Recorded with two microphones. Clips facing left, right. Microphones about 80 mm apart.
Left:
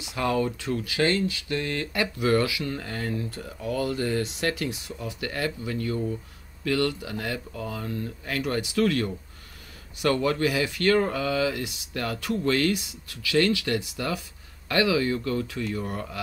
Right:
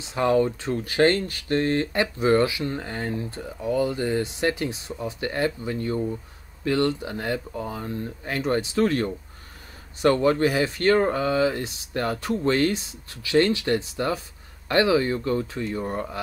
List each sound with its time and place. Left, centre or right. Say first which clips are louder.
0.0 s speech: right 5 dB; right